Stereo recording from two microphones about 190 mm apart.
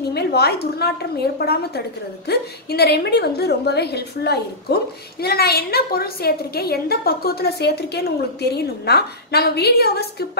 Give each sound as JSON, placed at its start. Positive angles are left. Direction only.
{"t": 0.1, "sound": "a woman's voice", "side_deg": 60}